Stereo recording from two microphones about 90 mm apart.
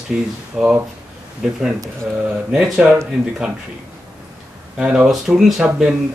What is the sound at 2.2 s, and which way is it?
Speech, 10° right (ahead or behind).